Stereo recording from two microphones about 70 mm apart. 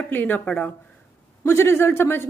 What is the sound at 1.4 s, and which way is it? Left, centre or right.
Speech, left.